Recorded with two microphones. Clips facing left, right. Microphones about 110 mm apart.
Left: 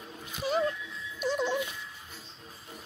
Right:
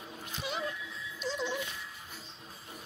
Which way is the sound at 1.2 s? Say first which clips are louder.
Left 6 dB; 50° left (ahead or behind).